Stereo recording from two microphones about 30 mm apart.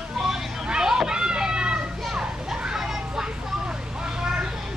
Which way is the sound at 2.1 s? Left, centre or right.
Right.